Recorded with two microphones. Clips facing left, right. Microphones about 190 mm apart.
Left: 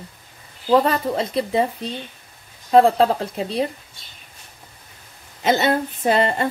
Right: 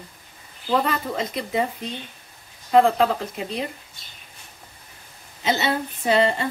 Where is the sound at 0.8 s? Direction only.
30° left (ahead or behind).